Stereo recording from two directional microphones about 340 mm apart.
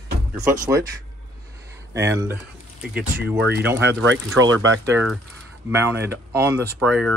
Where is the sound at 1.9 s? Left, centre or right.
Centre.